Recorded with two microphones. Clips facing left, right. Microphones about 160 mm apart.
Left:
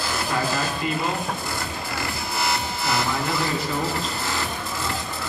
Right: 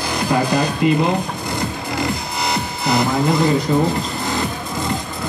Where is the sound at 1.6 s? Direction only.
20° right (ahead or behind).